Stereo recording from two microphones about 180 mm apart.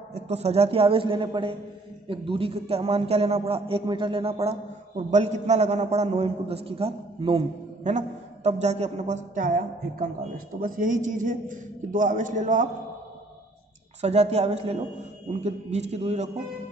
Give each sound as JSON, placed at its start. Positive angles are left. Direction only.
{"t": 0.1, "sound": "a man's voice", "side_deg": -35}
{"t": 14.0, "sound": "a man's voice", "side_deg": -35}